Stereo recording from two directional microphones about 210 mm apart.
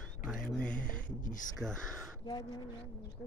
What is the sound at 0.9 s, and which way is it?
Speech, 35° left (ahead or behind).